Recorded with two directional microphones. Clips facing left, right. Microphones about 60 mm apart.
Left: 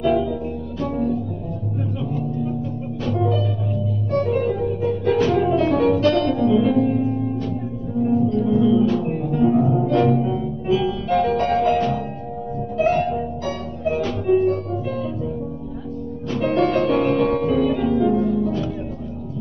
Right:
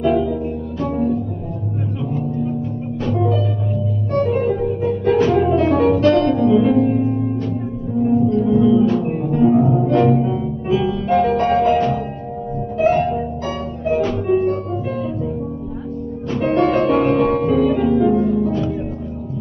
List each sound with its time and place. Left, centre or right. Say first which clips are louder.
0.0 s music: right 2 dB; right
3.1 s music: right 2 dB; right
16.3 s music: right 3 dB; right